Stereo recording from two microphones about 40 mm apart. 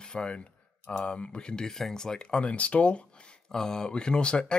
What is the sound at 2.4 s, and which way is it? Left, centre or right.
Speech, left.